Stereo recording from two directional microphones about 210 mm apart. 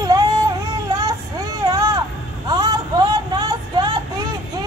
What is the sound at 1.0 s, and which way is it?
Vehicle, 15° right (ahead or behind).